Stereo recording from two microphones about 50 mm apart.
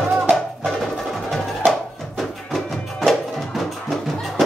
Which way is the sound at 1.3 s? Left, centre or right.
Centre.